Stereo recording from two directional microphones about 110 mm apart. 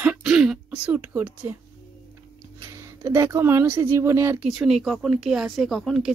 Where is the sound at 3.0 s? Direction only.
25° right (ahead or behind).